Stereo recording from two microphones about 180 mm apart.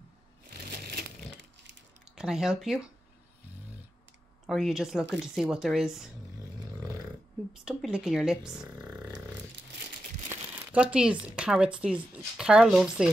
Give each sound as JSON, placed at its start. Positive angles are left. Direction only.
{"t": 0.5, "sound": "crushing", "side_deg": -60}
{"t": 2.1, "sound": "speech", "side_deg": -5}
{"t": 4.5, "sound": "speech", "side_deg": 0}
{"t": 7.5, "sound": "speech", "side_deg": -5}
{"t": 10.3, "sound": "speech", "side_deg": -10}